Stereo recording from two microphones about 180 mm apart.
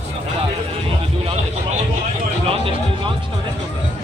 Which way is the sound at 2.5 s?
30° right (ahead or behind).